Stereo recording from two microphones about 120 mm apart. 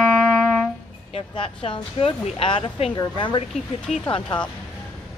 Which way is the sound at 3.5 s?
Centre (ahead or behind).